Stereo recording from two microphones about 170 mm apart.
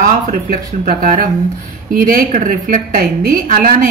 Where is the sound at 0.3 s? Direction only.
55° right (ahead or behind).